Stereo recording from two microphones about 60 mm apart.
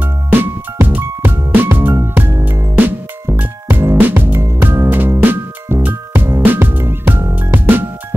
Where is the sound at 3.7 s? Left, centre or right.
Right.